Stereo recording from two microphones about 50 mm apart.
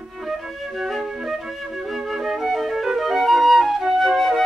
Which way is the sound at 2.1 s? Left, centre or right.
Centre.